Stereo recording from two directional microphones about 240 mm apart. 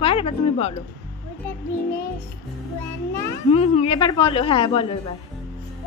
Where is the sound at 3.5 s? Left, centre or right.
Left.